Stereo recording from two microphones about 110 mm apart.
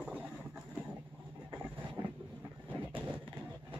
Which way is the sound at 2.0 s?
40° right (ahead or behind).